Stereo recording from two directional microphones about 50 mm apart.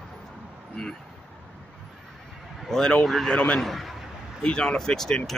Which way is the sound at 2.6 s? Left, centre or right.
Centre.